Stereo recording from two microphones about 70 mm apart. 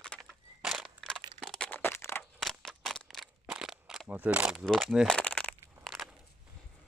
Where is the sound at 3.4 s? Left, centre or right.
Centre.